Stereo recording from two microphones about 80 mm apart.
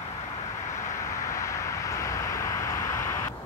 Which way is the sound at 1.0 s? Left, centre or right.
Left.